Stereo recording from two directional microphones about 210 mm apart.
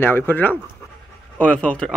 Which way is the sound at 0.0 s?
10° left (ahead or behind).